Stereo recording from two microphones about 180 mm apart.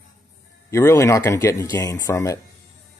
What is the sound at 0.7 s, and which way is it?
Speech, 15° left (ahead or behind).